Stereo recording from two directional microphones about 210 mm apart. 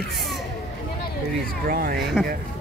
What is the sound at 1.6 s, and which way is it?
Speech, 45° right (ahead or behind).